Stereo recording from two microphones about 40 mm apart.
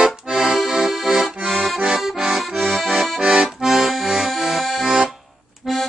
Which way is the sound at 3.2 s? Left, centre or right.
Right.